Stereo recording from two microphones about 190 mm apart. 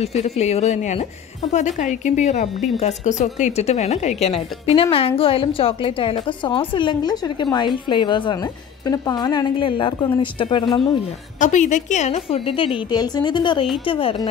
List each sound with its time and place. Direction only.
0.0 s a woman's voice: 35° left (ahead or behind)
11.3 s a woman's voice: 40° left (ahead or behind)